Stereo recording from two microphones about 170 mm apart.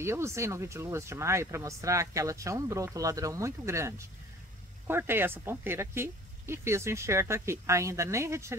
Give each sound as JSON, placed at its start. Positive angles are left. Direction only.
{"t": 0.0, "sound": "speech", "side_deg": -15}